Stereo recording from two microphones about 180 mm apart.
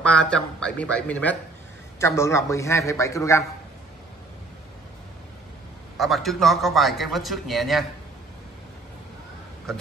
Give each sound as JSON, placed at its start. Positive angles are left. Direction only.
{"t": 0.0, "sound": "a man's voice", "side_deg": 5}
{"t": 5.9, "sound": "a man's voice", "side_deg": 0}